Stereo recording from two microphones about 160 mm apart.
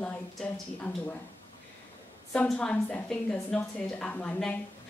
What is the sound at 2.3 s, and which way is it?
A woman's voice, 5° left (ahead or behind).